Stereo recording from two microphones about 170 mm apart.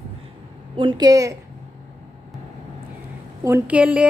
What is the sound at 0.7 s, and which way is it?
Speech, 25° right (ahead or behind).